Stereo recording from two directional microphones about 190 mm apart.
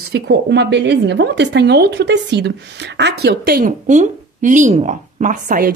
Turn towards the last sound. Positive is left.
turn(degrees=-45)  # may be behind; listen again after turning